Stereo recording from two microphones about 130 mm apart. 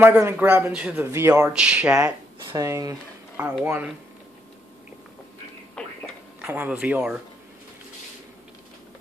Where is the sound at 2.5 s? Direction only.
25° right (ahead or behind).